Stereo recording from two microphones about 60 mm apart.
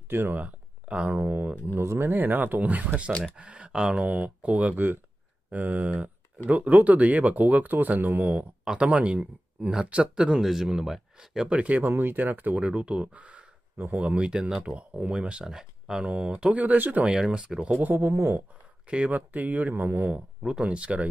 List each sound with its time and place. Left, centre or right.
0.1 s speech: right
0.4 s speech: right
1.8 s speech: right
2.1 s speech: right
8.6 s speech: centre
12.6 s speech: centre
17.1 s speech: centre
17.7 s speech: right
18.9 s speech: right
20.2 s speech: centre